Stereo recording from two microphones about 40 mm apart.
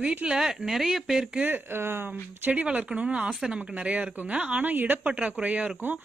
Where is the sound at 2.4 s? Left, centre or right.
Right.